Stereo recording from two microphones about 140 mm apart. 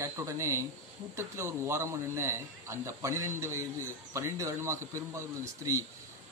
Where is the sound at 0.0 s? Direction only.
20° right (ahead or behind).